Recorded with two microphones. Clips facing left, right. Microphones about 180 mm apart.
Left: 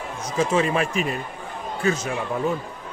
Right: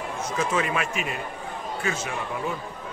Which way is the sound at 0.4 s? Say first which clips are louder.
Left 6 dB; 30° left (ahead or behind).